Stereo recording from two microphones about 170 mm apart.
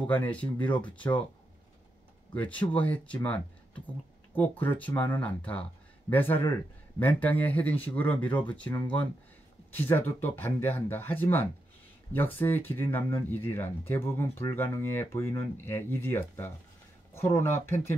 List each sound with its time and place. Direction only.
0.0 s speech: 10° left (ahead or behind)
2.4 s speech: 10° left (ahead or behind)
4.4 s speech: 10° left (ahead or behind)